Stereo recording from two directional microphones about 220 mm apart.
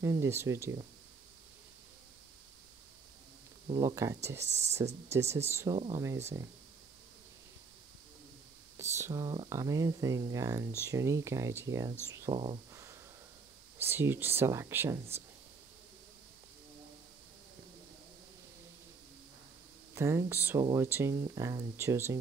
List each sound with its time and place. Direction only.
0.0 s speech: 15° right (ahead or behind)
3.6 s speech: 20° right (ahead or behind)
4.5 s speech: 30° right (ahead or behind)
5.1 s speech: 10° right (ahead or behind)
8.7 s speech: 10° right (ahead or behind)
19.9 s speech: 10° right (ahead or behind)